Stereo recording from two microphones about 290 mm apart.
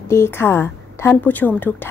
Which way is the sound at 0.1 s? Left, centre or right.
Centre.